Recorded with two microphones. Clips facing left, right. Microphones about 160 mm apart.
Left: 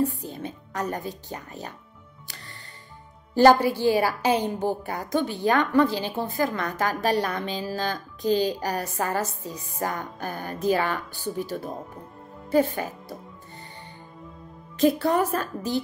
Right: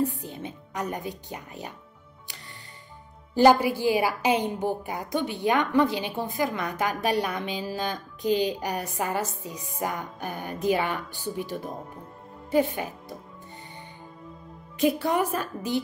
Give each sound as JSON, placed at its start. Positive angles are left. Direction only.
{"t": 0.0, "sound": "speech", "side_deg": -20}
{"t": 3.3, "sound": "a woman's voice", "side_deg": -15}
{"t": 12.4, "sound": "a woman's voice", "side_deg": -15}
{"t": 14.8, "sound": "a woman's voice", "side_deg": -15}